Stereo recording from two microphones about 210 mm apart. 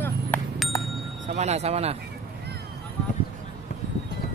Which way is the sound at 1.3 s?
30° right (ahead or behind).